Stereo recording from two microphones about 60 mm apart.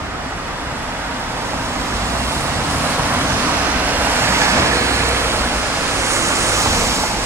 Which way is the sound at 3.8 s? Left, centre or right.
Right.